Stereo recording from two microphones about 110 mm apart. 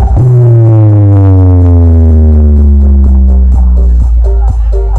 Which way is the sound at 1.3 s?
30° left (ahead or behind).